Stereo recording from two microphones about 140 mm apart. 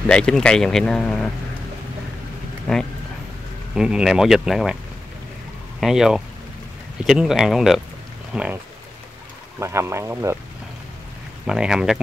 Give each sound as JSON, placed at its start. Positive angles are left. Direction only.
{"t": 0.1, "sound": "speech", "side_deg": 5}
{"t": 2.7, "sound": "speech", "side_deg": 5}
{"t": 5.8, "sound": "speech", "side_deg": -5}
{"t": 9.6, "sound": "speech", "side_deg": -20}
{"t": 11.4, "sound": "speech", "side_deg": -5}